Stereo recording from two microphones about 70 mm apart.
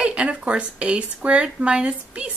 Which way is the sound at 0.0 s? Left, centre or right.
Centre.